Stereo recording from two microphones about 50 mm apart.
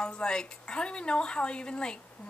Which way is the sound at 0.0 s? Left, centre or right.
Centre.